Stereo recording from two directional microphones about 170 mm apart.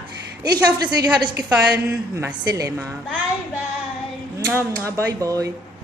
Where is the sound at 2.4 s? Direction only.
20° right (ahead or behind).